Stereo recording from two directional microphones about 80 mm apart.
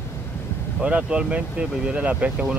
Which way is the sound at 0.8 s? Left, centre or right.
Centre.